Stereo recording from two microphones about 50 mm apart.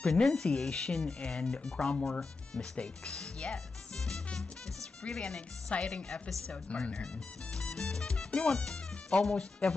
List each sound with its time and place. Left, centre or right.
0.1 s speech: centre
7.5 s music: centre